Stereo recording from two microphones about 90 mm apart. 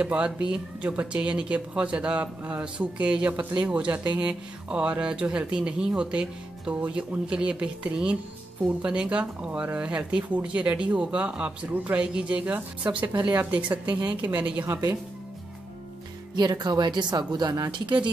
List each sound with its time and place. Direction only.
0.0 s a woman's voice: 10° right (ahead or behind)
14.7 s speech: 40° right (ahead or behind)
16.3 s speech: 55° right (ahead or behind)
17.6 s speech: 60° right (ahead or behind)